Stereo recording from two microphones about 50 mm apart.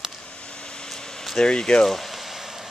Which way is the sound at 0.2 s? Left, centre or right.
Left.